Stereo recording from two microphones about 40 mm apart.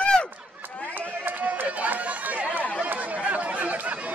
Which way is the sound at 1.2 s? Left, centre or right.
Right.